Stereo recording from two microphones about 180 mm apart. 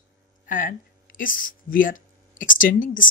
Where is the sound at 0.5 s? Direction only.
50° left (ahead or behind).